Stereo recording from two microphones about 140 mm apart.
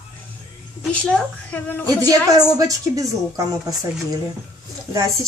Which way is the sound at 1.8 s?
25° right (ahead or behind).